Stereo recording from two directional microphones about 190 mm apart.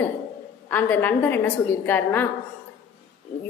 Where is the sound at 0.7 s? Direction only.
10° left (ahead or behind).